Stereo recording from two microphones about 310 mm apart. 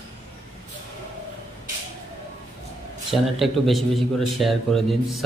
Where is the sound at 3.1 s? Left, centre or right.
Centre.